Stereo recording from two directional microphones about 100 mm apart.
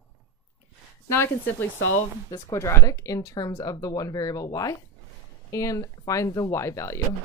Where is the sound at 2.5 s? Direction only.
30° left (ahead or behind).